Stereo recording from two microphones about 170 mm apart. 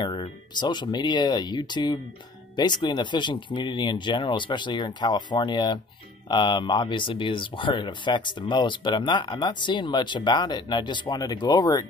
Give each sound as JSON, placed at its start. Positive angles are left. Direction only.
{"t": 0.0, "sound": "speech", "side_deg": 30}